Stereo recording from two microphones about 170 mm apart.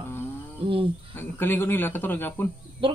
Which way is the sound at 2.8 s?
30° right (ahead or behind).